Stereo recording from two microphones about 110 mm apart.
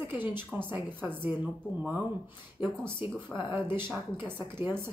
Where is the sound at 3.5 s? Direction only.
20° right (ahead or behind).